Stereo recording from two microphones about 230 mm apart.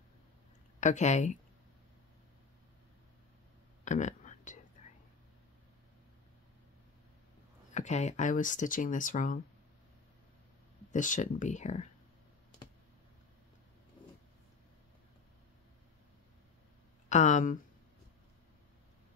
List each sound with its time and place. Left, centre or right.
0.7 s speech: left
3.8 s a sound: left
7.7 s speech: left
10.9 s speech: left
17.1 s speech: left